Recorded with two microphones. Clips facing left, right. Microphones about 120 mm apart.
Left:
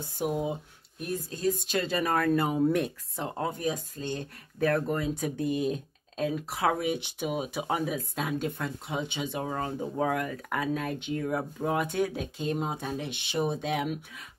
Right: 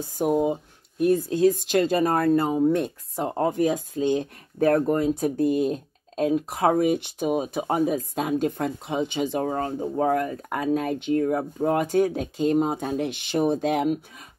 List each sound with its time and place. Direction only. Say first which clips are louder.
0.2 s speech: right 8 dB; 45° right (ahead or behind); by 1.5 s 65° right (ahead or behind)
1.8 s speech: right 9 dB; 50° right (ahead or behind)
2.1 s speech: right 5 dB; 30° right (ahead or behind)
3.3 s speech: right 8 dB; 55° right (ahead or behind)
4.6 s speech: right 7 dB; 45° right (ahead or behind)